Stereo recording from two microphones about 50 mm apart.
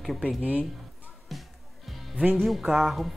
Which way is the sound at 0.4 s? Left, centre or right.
Right.